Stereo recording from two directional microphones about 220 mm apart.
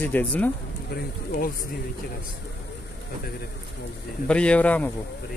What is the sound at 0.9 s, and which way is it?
Speech, 40° left (ahead or behind).